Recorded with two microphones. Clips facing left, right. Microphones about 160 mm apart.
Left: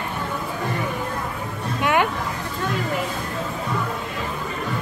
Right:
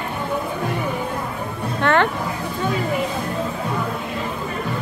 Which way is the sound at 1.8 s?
10° left (ahead or behind).